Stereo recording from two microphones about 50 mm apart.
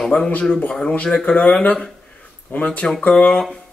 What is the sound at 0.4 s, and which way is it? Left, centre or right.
Speech, left.